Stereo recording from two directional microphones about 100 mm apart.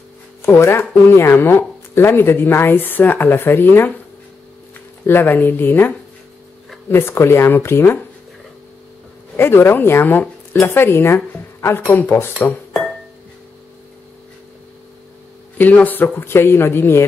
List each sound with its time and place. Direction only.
0.4 s speech: 25° left (ahead or behind)
5.0 s speech: 20° left (ahead or behind)
9.4 s speech: 20° left (ahead or behind)
15.5 s speech: 15° left (ahead or behind)